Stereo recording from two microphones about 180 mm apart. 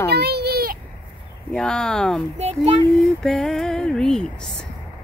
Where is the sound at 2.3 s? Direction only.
35° right (ahead or behind).